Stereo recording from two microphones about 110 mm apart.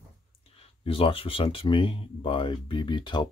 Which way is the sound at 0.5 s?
55° left (ahead or behind).